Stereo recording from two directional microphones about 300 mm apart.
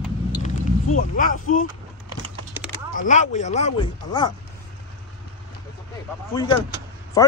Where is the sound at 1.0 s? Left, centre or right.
Left.